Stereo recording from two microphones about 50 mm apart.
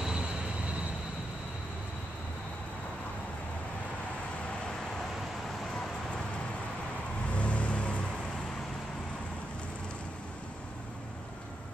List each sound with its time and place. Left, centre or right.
0.0 s vehicle: centre
7.2 s vehicle: left